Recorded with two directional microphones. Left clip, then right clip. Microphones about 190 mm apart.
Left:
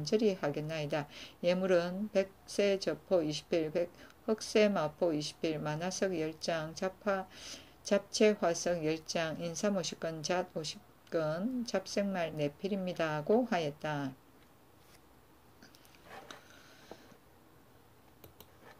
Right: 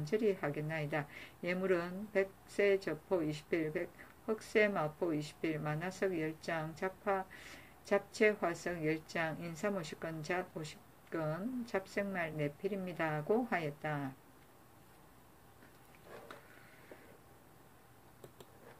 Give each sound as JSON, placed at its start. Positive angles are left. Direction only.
{"t": 0.0, "sound": "a woman's voice", "side_deg": 20}